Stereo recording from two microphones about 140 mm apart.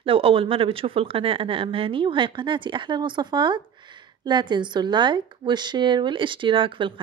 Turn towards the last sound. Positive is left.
turn(degrees=-35)  # may be behind; listen again after turning